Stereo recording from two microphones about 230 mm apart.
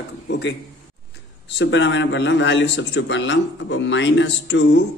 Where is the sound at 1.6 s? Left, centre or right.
Left.